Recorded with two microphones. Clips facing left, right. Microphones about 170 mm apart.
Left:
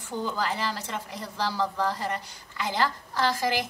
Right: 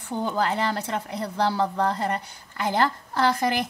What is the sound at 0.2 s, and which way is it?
A woman's voice, 60° right (ahead or behind).